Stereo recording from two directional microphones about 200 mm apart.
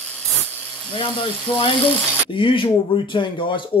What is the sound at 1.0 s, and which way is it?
Speech, 25° left (ahead or behind).